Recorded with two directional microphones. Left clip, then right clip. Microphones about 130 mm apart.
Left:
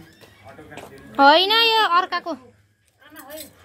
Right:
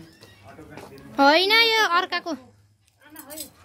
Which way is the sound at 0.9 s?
20° right (ahead or behind).